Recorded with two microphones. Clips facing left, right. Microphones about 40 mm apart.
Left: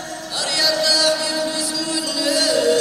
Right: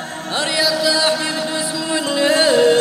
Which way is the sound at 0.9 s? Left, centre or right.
Right.